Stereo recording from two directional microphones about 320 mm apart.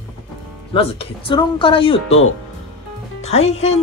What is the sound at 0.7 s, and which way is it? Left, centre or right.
Speech, centre.